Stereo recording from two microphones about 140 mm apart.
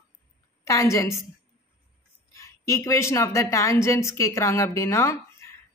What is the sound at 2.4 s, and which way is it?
Speech, 20° left (ahead or behind).